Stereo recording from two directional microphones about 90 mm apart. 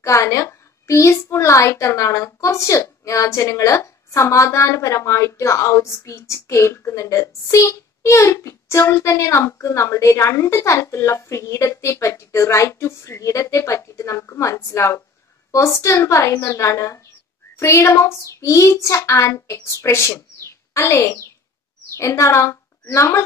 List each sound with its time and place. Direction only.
0.0 s a child's voice: 35° left (ahead or behind)